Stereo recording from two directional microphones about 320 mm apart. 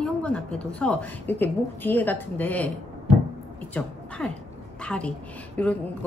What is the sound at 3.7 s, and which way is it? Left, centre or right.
A woman's voice, centre.